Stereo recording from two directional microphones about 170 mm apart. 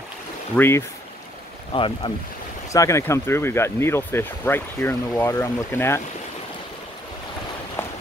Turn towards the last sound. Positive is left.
turn(degrees=15)  # may be behind; listen again after turning